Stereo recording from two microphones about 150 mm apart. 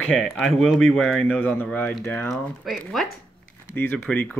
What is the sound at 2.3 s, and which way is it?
Speech, centre (ahead or behind).